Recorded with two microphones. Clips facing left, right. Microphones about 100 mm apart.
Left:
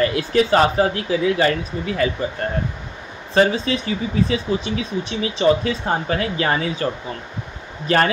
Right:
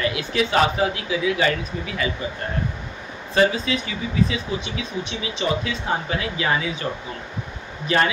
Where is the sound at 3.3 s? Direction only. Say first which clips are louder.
Left 2 dB; 35° left (ahead or behind).